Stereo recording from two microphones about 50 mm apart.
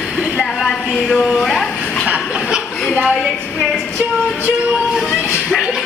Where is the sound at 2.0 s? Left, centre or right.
Centre.